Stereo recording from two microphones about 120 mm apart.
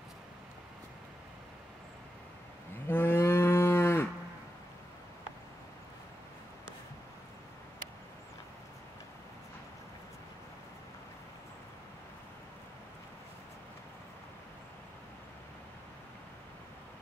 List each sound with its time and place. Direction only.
2.9 s cattle: 20° left (ahead or behind)